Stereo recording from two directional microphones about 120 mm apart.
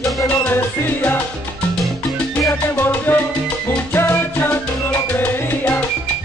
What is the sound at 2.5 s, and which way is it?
Music, 15° left (ahead or behind).